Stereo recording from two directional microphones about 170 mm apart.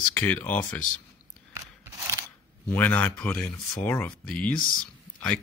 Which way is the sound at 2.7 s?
10° left (ahead or behind).